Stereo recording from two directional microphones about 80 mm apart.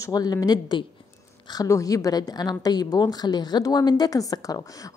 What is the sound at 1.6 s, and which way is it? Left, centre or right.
A woman's voice, left.